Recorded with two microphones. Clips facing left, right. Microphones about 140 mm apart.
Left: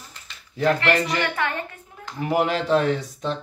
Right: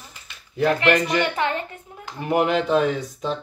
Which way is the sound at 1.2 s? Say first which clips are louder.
Right 3 dB; 20° right (ahead or behind).